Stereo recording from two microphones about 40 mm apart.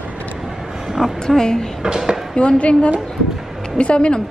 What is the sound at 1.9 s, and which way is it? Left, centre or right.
Speech, centre.